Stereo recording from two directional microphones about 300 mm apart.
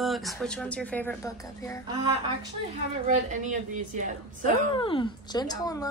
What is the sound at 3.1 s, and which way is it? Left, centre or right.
A woman's voice, right.